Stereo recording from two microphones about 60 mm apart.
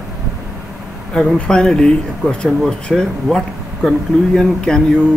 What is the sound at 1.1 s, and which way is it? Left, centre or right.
Speech, centre.